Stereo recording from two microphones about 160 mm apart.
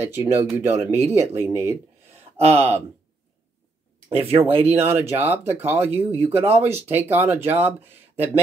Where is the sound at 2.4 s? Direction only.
40° right (ahead or behind).